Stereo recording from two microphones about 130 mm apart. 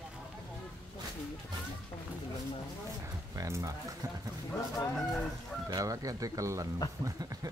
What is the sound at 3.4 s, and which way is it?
Speech, 25° right (ahead or behind).